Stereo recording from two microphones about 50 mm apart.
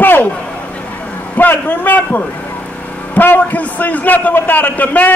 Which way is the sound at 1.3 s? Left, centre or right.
Left.